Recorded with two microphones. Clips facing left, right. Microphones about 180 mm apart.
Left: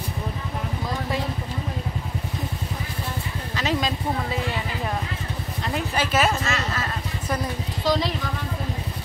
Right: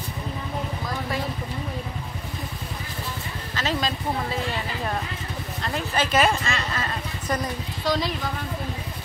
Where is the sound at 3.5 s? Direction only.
15° left (ahead or behind).